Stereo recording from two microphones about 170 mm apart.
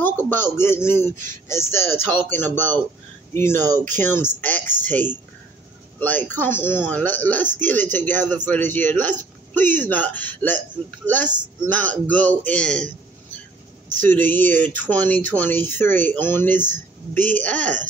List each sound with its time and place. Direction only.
0.0 s speech: 10° left (ahead or behind)
11.6 s speech: 10° left (ahead or behind)
13.8 s speech: 50° right (ahead or behind)
14.1 s speech: 10° left (ahead or behind)